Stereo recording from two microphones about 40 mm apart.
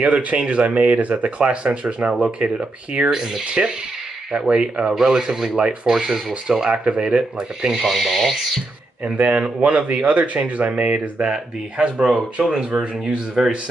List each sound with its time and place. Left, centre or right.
0.0 s speech: right; by 3.4 s centre
3.4 s speech: right
7.7 s speech: centre
9.0 s speech: right; by 13.5 s centre